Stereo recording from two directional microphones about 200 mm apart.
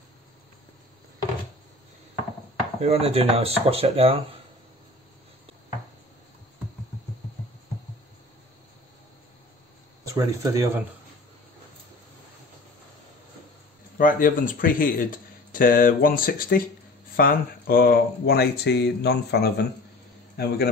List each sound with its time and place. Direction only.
2.8 s speech: 30° right (ahead or behind)
10.0 s speech: 15° right (ahead or behind)
13.9 s speech: 40° left (ahead or behind)